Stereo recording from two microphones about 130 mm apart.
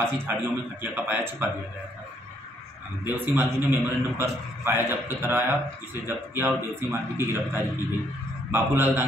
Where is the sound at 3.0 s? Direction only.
15° right (ahead or behind).